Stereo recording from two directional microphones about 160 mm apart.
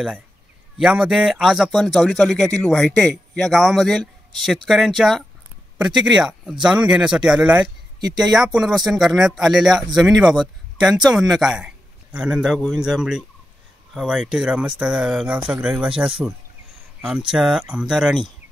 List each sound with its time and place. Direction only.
0.7 s speech: centre (ahead or behind)
17.3 s speech: 5° right (ahead or behind)